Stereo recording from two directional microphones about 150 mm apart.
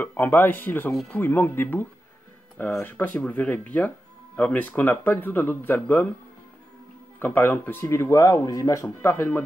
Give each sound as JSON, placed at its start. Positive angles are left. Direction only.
{"t": 0.0, "sound": "speech", "side_deg": 15}
{"t": 7.2, "sound": "speech", "side_deg": 15}